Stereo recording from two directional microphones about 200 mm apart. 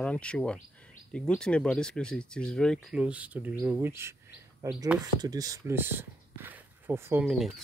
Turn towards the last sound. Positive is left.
turn(degrees=-5)  # may be behind; listen again after turning